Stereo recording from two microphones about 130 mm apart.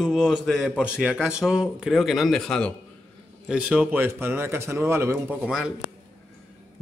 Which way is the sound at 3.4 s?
10° right (ahead or behind).